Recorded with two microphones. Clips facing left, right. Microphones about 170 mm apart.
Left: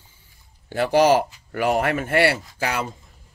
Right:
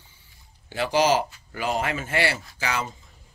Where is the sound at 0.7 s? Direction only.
55° left (ahead or behind).